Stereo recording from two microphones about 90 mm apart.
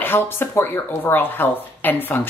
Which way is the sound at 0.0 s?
25° left (ahead or behind).